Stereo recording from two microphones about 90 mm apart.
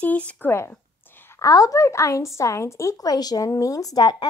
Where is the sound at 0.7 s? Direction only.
25° left (ahead or behind).